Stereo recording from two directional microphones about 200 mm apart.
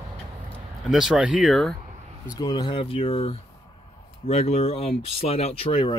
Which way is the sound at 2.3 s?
20° left (ahead or behind).